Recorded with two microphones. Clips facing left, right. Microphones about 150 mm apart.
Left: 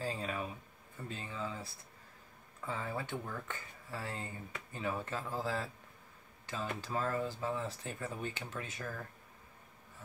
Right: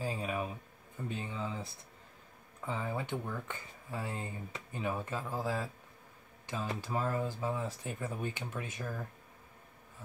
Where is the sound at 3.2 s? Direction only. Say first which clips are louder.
Right 2 dB; 10° right (ahead or behind).